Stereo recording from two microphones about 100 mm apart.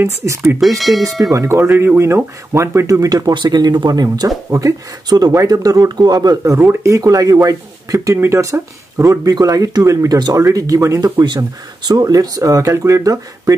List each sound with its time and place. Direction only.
0.0 s speech: 30° right (ahead or behind)
0.7 s speech: centre (ahead or behind)
1.3 s speech: 30° right (ahead or behind)